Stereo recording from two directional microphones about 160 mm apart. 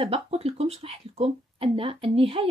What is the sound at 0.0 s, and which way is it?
Speech, 40° right (ahead or behind).